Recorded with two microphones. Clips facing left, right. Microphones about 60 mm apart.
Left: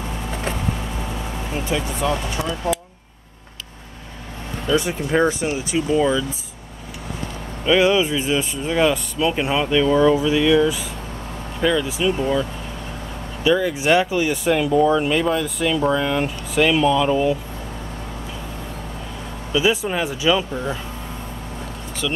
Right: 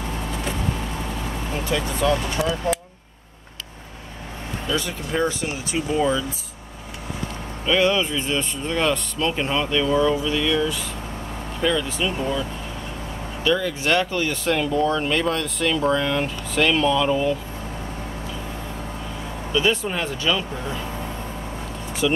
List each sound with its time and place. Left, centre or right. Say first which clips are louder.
1.7 s speech: right 1 dB; centre
4.7 s speech: left 6 dB; left
5.9 s speech: left 2 dB; centre
7.6 s speech: left 3 dB; centre
13.4 s speech: left 4 dB; centre
19.5 s speech: left 2 dB; centre
22.0 s speech: right 4 dB; centre